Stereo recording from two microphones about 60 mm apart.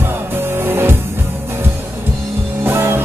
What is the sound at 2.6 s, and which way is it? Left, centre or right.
Music, right.